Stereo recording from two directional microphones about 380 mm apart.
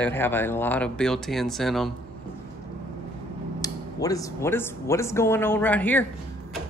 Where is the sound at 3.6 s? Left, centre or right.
Centre.